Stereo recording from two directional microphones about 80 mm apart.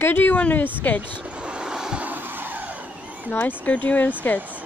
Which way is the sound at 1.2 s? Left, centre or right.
Centre.